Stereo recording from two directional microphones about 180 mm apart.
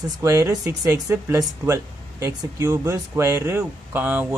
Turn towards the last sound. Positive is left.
turn(degrees=-10)  # may be behind; listen again after turning